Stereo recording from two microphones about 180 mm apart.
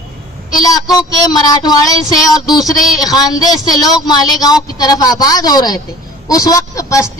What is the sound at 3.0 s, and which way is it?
Speech, 20° left (ahead or behind).